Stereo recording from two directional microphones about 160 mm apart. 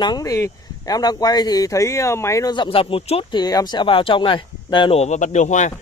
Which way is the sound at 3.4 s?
25° left (ahead or behind).